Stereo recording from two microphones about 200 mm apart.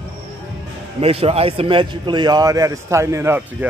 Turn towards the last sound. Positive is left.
turn(degrees=-10)  # may be behind; listen again after turning